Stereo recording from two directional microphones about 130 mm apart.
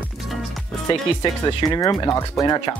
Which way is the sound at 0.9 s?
35° left (ahead or behind).